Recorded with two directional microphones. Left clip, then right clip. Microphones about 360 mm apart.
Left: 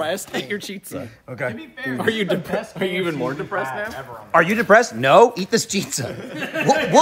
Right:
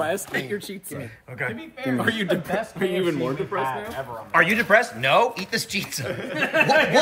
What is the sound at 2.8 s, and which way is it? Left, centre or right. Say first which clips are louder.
Speech: left 1 dB; left.